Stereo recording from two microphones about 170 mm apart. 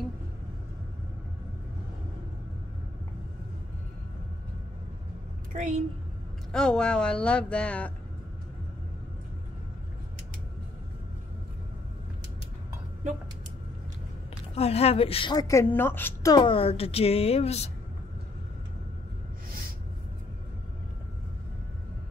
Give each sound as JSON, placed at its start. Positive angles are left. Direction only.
{"t": 5.5, "sound": "a woman's voice", "side_deg": -45}
{"t": 6.5, "sound": "speech", "side_deg": 5}
{"t": 14.5, "sound": "a woman's voice", "side_deg": 35}